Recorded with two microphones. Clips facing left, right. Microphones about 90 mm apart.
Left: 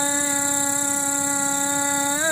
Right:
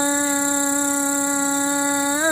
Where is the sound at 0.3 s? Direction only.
30° right (ahead or behind).